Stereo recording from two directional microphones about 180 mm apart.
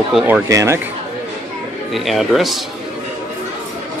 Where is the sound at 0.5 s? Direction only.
15° right (ahead or behind).